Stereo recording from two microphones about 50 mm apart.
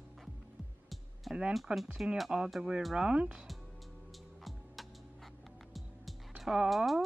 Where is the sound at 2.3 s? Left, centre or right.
Centre.